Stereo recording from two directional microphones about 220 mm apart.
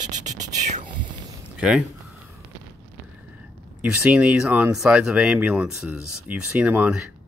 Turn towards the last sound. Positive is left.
turn(degrees=-5)  # may be behind; listen again after turning